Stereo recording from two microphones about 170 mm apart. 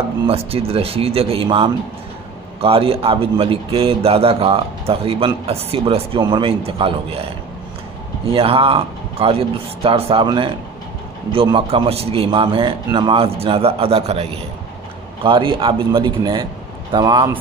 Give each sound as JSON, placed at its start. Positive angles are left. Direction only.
{"t": 0.3, "sound": "a man's voice", "side_deg": -35}
{"t": 11.5, "sound": "a man's voice", "side_deg": -30}